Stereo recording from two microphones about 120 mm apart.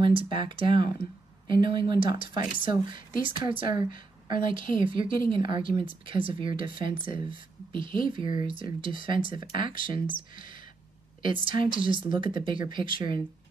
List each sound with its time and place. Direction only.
0.0 s speech: 45° right (ahead or behind)